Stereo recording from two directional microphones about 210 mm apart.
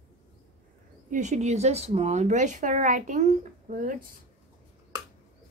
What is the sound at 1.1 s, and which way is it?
Speech, 35° right (ahead or behind).